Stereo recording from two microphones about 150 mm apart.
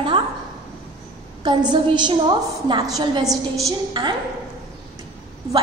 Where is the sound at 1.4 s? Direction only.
30° right (ahead or behind).